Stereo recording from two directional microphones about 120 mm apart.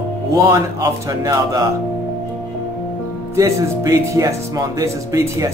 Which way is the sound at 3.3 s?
25° right (ahead or behind).